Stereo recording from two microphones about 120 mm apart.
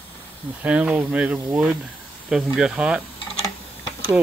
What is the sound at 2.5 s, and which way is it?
Speech, 5° right (ahead or behind).